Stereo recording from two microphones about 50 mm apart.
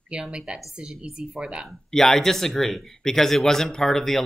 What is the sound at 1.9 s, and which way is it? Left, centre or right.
Speech, centre.